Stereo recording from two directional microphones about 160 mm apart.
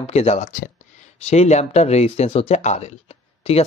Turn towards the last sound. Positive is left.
turn(degrees=40)  # may be behind; listen again after turning